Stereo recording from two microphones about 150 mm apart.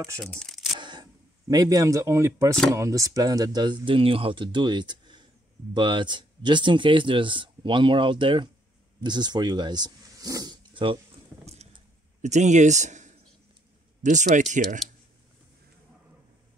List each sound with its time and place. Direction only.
0.2 s speech: 5° left (ahead or behind)
0.7 s single-lens reflex camera: 30° right (ahead or behind)
1.5 s speech: 25° right (ahead or behind)
12.2 s a man's voice: 50° right (ahead or behind)